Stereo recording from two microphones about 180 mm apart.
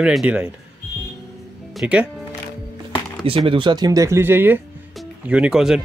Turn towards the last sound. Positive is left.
turn(degrees=-5)  # may be behind; listen again after turning